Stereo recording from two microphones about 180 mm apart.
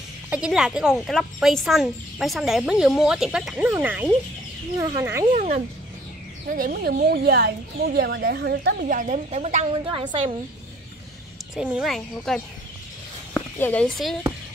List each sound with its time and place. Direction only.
0.3 s speech: 5° right (ahead or behind)
5.3 s a woman's voice: 50° right (ahead or behind)
8.8 s a woman's voice: 45° right (ahead or behind); by 10.3 s 30° right (ahead or behind)
11.5 s speech: 5° right (ahead or behind)